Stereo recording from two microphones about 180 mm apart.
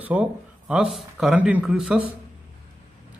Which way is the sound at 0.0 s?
5° right (ahead or behind).